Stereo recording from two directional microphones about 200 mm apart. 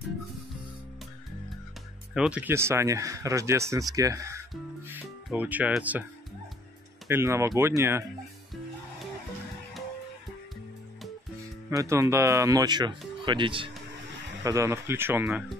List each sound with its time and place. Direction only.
2.1 s speech: 5° right (ahead or behind)
7.1 s speech: 15° right (ahead or behind)
11.7 s speech: 15° right (ahead or behind)